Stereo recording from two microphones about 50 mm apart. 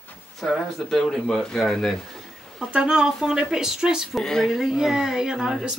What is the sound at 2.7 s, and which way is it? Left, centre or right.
Speech, centre.